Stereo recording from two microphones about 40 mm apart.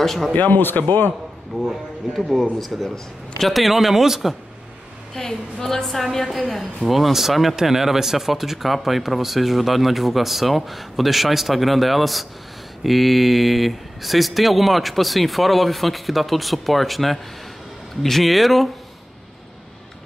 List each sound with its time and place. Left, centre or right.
0.0 s speech: centre
0.3 s speech: left
0.6 s a man's voice: left
2.7 s speech: centre
5.1 s speech: centre